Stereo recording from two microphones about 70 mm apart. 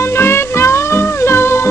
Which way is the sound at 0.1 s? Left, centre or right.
Left.